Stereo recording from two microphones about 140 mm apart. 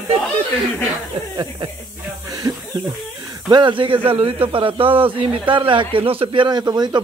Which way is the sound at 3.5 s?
35° right (ahead or behind).